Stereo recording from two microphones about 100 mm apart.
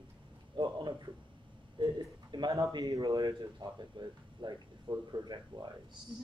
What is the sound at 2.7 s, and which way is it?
Speech, 40° right (ahead or behind).